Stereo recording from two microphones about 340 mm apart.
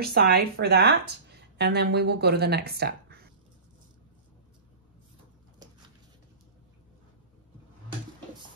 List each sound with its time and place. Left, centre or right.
0.0 s speech: right